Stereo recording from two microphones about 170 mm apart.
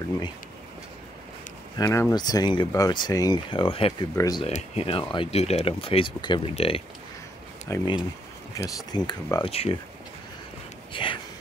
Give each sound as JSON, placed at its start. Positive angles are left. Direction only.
{"t": 1.8, "sound": "speech", "side_deg": 15}
{"t": 4.1, "sound": "speech", "side_deg": 20}
{"t": 4.5, "sound": "speech", "side_deg": 40}
{"t": 7.6, "sound": "speech", "side_deg": 25}
{"t": 10.9, "sound": "a sound", "side_deg": 30}